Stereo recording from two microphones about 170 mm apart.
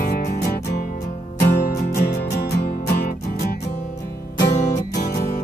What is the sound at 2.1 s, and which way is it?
Music, 65° left (ahead or behind).